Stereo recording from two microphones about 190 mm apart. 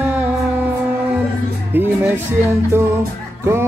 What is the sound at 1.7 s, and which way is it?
Speech, 10° right (ahead or behind).